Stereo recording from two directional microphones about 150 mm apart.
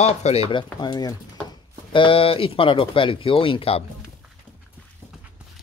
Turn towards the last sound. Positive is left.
turn(degrees=35)  # may be behind; listen again after turning